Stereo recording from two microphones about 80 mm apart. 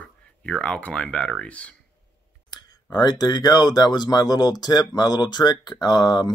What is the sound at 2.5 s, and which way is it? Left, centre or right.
Speech, left.